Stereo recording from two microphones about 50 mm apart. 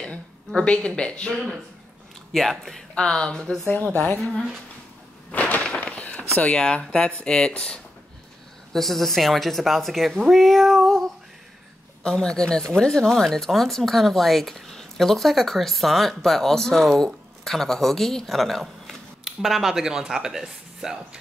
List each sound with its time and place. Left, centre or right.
0.6 s speech: centre
2.3 s speech: centre
2.9 s speech: centre
3.9 s speech: left
5.3 s a sound: left
7.2 s speech: centre
8.7 s speech: centre